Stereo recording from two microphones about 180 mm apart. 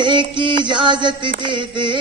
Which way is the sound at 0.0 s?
25° right (ahead or behind).